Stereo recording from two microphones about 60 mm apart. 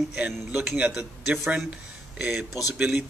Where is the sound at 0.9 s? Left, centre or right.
Centre.